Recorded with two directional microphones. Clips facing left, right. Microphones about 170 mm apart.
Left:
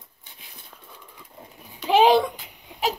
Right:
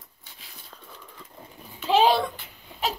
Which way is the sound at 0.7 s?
10° left (ahead or behind).